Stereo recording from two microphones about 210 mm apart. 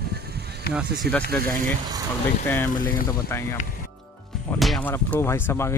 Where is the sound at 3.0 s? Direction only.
15° left (ahead or behind).